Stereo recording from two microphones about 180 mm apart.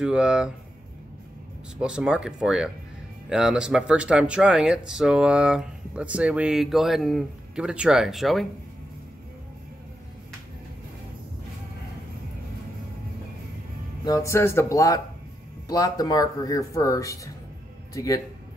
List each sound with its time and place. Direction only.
0.0 s speech: 5° right (ahead or behind)
1.8 s speech: 5° right (ahead or behind)
14.0 s speech: 20° left (ahead or behind)